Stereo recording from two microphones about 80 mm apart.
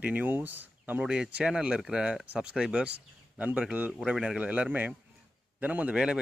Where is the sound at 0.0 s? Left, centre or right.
Centre.